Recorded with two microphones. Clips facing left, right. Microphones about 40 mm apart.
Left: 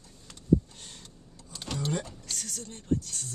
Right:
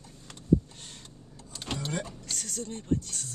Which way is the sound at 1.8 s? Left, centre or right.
Centre.